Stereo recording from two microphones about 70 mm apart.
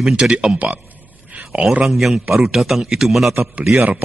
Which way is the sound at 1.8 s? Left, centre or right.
Centre.